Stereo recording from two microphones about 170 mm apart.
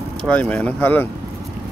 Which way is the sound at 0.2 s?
10° left (ahead or behind).